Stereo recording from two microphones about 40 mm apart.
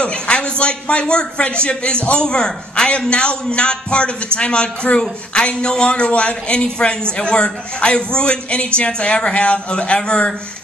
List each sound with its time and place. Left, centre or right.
0.0 s a man's voice: left
4.9 s speech: left
5.3 s a man's voice: left